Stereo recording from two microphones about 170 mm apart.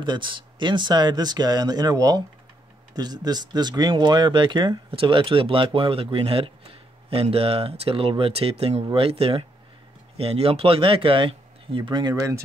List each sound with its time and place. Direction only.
0.0 s speech: 30° right (ahead or behind)